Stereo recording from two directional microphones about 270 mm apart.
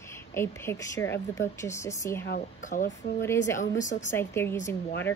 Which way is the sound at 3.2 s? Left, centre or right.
Centre.